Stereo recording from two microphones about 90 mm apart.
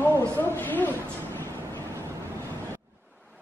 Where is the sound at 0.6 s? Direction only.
20° left (ahead or behind).